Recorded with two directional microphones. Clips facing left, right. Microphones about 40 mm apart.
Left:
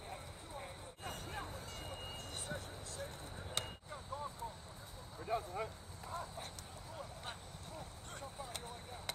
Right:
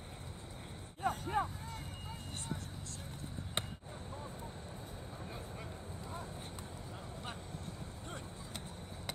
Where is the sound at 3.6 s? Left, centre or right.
Right.